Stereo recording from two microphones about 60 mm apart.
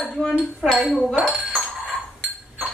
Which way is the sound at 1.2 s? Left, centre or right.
Centre.